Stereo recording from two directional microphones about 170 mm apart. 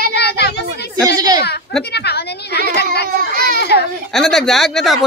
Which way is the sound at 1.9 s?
75° left (ahead or behind).